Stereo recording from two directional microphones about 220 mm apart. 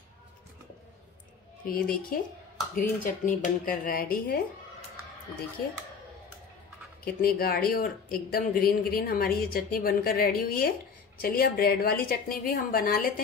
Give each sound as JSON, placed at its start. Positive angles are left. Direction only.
{"t": 1.7, "sound": "speech", "side_deg": 40}
{"t": 7.2, "sound": "a woman's voice", "side_deg": 45}